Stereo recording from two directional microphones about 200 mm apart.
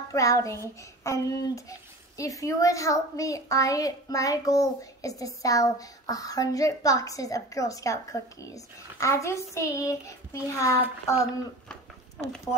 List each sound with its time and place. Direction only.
0.1 s a child's voice: 15° left (ahead or behind)